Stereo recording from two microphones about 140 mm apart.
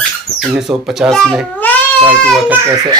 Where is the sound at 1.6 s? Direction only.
10° left (ahead or behind).